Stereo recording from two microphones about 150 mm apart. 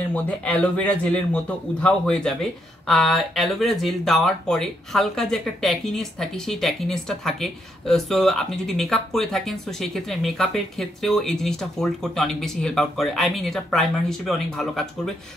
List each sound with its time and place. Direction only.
0.1 s a man's voice: 10° left (ahead or behind)